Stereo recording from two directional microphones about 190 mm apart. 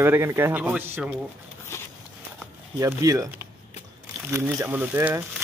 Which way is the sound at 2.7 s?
15° right (ahead or behind).